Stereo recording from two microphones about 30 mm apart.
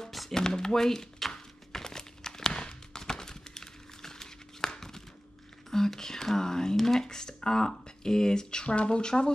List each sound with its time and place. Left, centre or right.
0.3 s speech: left
1.7 s a sound: centre
5.7 s speech: centre
8.6 s speech: left